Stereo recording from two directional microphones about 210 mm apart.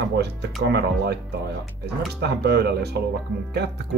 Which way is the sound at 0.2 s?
50° right (ahead or behind).